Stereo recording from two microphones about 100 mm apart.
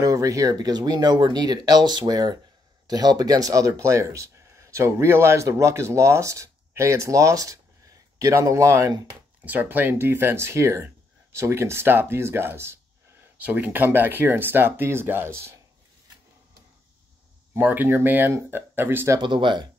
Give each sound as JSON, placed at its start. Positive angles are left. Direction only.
{"t": 0.0, "sound": "speech", "side_deg": -35}
{"t": 9.4, "sound": "speech", "side_deg": -20}
{"t": 17.6, "sound": "speech", "side_deg": -20}
{"t": 19.1, "sound": "speech", "side_deg": -50}